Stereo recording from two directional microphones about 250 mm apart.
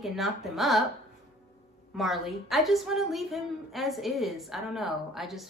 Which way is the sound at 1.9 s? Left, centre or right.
Centre.